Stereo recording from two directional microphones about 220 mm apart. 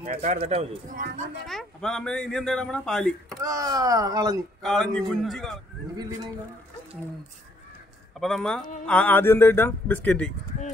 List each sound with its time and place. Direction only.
0.0 s speech: 30° right (ahead or behind)
1.4 s speech: centre (ahead or behind)
3.3 s speech: 15° right (ahead or behind)
4.6 s speech: centre (ahead or behind)
5.9 s speech: 20° right (ahead or behind)
8.2 s speech: centre (ahead or behind)